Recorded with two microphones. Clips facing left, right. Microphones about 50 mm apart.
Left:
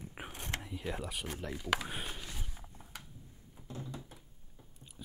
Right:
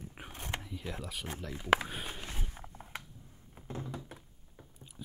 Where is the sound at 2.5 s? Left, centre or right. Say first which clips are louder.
Right 5 dB; right.